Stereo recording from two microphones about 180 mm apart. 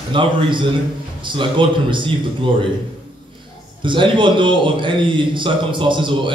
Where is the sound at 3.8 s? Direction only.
25° right (ahead or behind).